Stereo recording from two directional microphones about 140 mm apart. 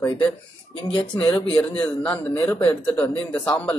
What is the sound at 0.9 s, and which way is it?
Speech, 35° left (ahead or behind).